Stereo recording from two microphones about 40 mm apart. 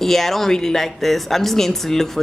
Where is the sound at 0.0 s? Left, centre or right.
Centre.